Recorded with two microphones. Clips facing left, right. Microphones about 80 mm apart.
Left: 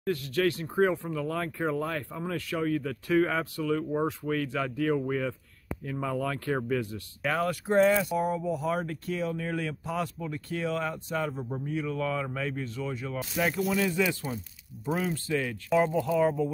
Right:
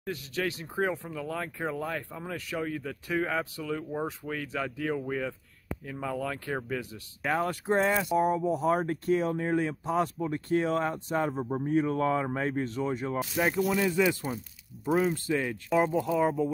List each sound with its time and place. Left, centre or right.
0.0 s speech: centre
6.9 s speech: right
8.1 s speech: centre
8.5 s speech: right
13.4 s speech: centre